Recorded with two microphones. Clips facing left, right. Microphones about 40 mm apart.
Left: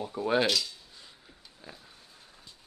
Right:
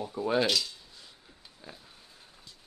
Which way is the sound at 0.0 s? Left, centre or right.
Centre.